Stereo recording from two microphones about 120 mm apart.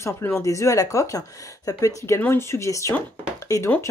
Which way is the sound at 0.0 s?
25° left (ahead or behind).